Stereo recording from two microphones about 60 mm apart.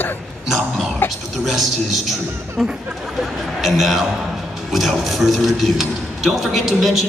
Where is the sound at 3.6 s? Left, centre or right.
Centre.